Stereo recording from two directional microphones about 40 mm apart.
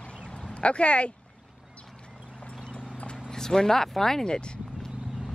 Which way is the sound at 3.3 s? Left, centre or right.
Centre.